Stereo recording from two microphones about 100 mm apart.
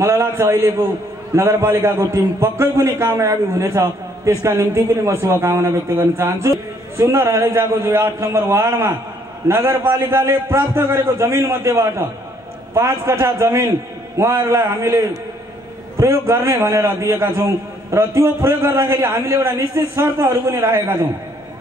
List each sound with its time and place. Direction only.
0.0 s a man's voice: 25° right (ahead or behind)